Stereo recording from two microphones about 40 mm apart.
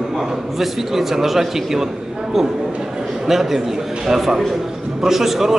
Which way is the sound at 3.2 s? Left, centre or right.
Centre.